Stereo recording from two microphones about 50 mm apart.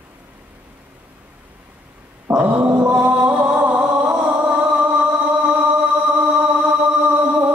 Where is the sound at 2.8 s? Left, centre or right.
Right.